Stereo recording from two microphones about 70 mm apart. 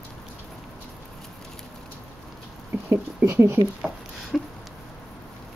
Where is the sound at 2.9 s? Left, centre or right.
Right.